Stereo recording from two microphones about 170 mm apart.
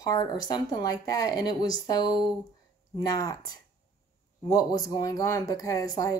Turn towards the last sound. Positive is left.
turn(degrees=20)  # may be behind; listen again after turning